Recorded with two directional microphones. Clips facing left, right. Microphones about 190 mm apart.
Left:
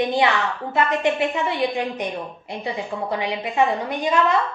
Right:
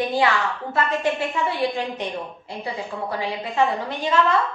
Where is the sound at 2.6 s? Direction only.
20° left (ahead or behind).